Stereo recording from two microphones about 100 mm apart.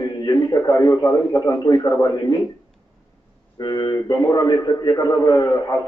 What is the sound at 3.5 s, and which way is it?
A man's voice, 45° left (ahead or behind).